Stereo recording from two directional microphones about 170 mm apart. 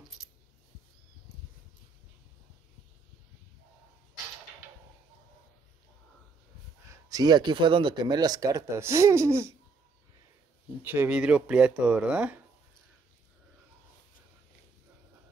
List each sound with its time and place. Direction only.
6.9 s speech: 20° right (ahead or behind)
10.8 s speech: 10° right (ahead or behind)